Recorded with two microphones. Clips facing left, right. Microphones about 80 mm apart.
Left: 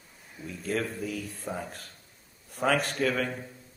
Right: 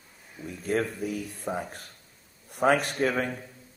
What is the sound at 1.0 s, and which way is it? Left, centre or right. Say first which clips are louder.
Speech: right 3 dB; centre.